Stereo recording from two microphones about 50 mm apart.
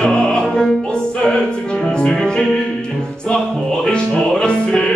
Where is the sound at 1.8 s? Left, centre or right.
Centre.